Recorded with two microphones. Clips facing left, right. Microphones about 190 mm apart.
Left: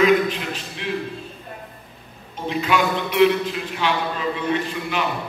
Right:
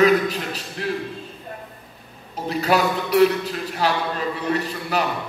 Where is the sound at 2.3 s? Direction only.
40° right (ahead or behind).